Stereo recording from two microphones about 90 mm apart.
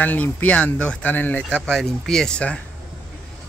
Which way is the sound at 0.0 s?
20° left (ahead or behind).